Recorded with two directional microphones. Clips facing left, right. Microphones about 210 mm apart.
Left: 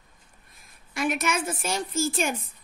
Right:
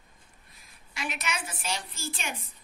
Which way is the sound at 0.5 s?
50° left (ahead or behind).